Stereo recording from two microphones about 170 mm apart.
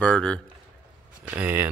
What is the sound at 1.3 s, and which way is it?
Speech, 10° right (ahead or behind).